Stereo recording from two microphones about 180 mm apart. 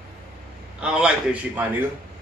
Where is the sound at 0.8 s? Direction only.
5° right (ahead or behind).